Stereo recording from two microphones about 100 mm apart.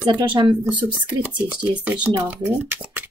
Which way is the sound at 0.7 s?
15° right (ahead or behind).